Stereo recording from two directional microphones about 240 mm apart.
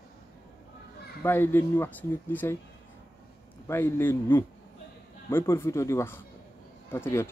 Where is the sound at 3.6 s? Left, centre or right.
Centre.